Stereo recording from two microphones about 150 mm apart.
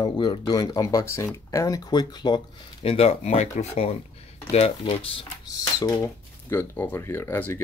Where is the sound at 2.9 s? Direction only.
45° left (ahead or behind).